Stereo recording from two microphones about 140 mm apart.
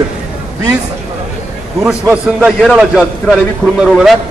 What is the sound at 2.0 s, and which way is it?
A man's voice, 10° right (ahead or behind).